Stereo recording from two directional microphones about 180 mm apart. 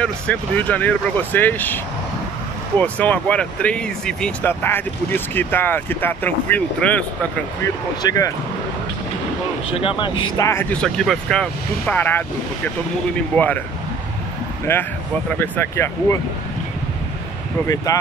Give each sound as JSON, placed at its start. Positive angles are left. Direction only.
{"t": 0.0, "sound": "speech", "side_deg": 10}
{"t": 2.8, "sound": "speech", "side_deg": 10}
{"t": 8.0, "sound": "speech", "side_deg": 20}
{"t": 9.8, "sound": "speech", "side_deg": 30}
{"t": 10.3, "sound": "speech", "side_deg": 15}
{"t": 14.7, "sound": "speech", "side_deg": 10}